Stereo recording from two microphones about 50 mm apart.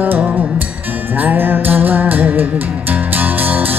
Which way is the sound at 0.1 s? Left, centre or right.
Right.